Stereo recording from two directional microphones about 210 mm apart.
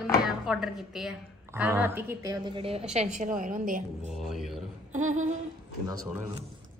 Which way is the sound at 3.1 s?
35° right (ahead or behind).